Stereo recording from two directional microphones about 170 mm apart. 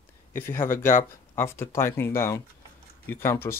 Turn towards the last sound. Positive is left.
turn(degrees=15)  # may be behind; listen again after turning